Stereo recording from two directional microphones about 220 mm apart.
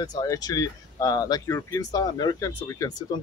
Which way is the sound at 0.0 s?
15° left (ahead or behind).